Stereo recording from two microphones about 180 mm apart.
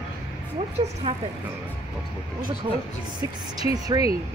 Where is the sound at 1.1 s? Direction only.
30° right (ahead or behind).